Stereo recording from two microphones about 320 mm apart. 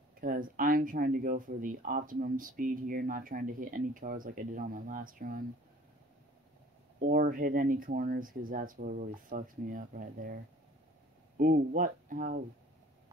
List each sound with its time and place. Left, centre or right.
0.2 s speech: right
7.0 s speech: right